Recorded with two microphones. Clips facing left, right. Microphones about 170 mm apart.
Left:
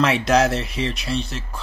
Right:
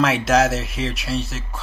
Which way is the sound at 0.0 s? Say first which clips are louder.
Even; centre (ahead or behind).